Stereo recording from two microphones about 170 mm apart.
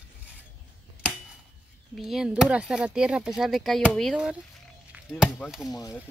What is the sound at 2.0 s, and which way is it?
Speech, centre (ahead or behind).